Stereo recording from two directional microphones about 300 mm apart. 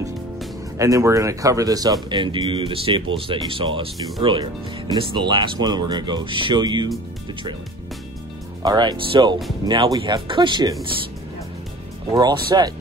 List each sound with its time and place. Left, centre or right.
0.7 s speech: centre
8.6 s speech: centre
12.1 s speech: centre